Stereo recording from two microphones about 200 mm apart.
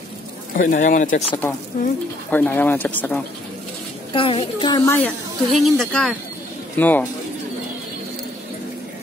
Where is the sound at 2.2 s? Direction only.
10° left (ahead or behind).